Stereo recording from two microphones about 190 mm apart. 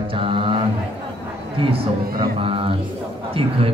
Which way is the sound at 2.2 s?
30° right (ahead or behind).